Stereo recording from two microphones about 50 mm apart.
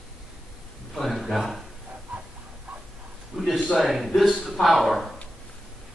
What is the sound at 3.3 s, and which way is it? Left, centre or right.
A man's voice, centre.